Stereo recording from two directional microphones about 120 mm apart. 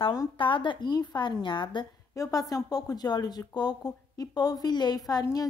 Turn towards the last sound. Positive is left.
turn(degrees=30)  # may be behind; listen again after turning